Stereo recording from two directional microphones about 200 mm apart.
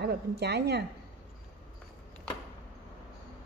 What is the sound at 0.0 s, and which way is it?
Speech, 55° right (ahead or behind).